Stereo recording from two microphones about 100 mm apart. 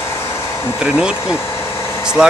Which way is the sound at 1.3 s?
25° left (ahead or behind).